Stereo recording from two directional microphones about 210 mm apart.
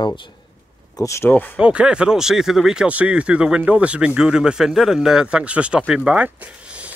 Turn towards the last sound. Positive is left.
turn(degrees=-5)  # may be behind; listen again after turning